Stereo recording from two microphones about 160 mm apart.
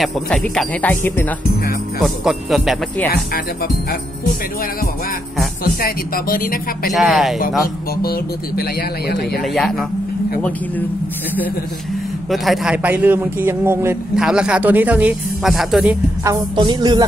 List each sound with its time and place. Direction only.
0.0 s speech: centre (ahead or behind)
2.0 s speech: centre (ahead or behind)
3.1 s speech: 70° left (ahead or behind)
5.6 s speech: 65° left (ahead or behind)
6.9 s speech: centre (ahead or behind)
8.0 s speech: 70° left (ahead or behind)
9.4 s speech: centre (ahead or behind)
12.3 s a man's voice: centre (ahead or behind)
14.1 s speech: 5° right (ahead or behind)
16.5 s speech: 30° right (ahead or behind)